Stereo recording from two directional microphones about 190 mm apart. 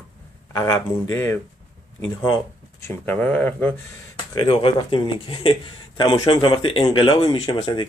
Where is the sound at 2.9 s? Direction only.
10° left (ahead or behind).